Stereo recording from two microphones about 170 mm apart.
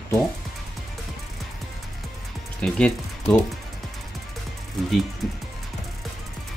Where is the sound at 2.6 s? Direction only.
5° left (ahead or behind).